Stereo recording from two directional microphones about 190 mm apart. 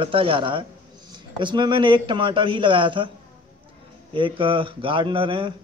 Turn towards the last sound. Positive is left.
turn(degrees=-25)  # may be behind; listen again after turning